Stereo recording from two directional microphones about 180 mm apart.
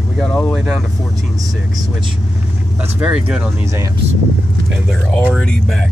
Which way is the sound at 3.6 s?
15° right (ahead or behind).